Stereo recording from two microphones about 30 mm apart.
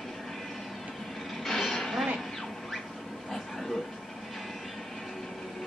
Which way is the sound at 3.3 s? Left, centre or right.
Centre.